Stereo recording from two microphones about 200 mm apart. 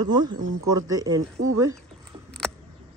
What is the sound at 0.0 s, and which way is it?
Speech, 20° right (ahead or behind).